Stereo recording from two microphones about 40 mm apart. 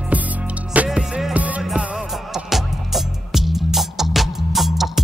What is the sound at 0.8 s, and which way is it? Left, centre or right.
Music, right.